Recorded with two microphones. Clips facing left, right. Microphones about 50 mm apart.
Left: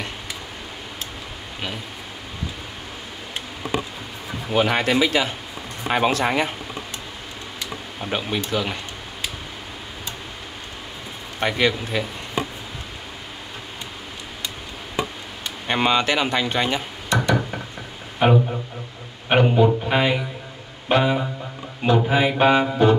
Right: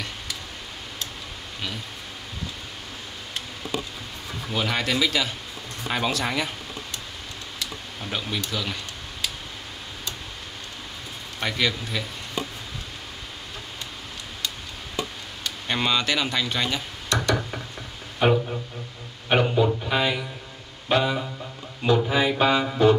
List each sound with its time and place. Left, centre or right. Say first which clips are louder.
4.5 s speech: left 6 dB; left
7.5 s speech: left 3 dB; left
11.3 s speech: left 5 dB; left
15.0 s a sound: left 5 dB; left
18.2 s speech: left 3 dB; left